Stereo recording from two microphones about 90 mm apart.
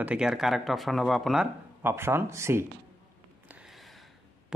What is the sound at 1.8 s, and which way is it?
Speech, 25° right (ahead or behind).